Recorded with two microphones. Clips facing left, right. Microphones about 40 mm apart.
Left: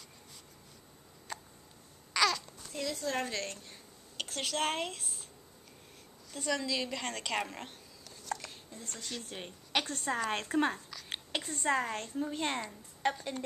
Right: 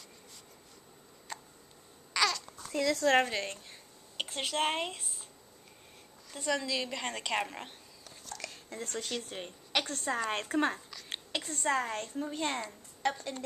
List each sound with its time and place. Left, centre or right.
1.3 s a sound: centre
2.1 s babbling: centre
2.9 s speech: right
3.3 s a woman's voice: centre
6.3 s a woman's voice: centre
8.7 s speech: right
9.1 s a woman's voice: centre